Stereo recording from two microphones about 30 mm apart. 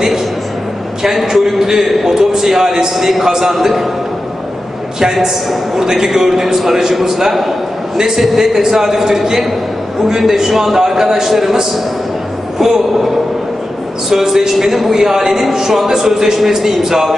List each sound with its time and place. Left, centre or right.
1.2 s a man's voice: centre
5.0 s a man's voice: centre
12.5 s a man's voice: centre